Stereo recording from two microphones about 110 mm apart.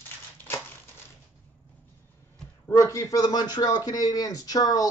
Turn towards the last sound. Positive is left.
turn(degrees=35)  # may be behind; listen again after turning